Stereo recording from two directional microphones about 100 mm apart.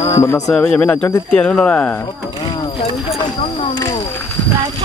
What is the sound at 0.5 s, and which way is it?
Speech, 15° left (ahead or behind).